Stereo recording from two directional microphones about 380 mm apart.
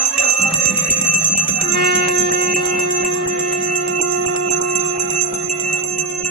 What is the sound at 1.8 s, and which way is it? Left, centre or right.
Music, right.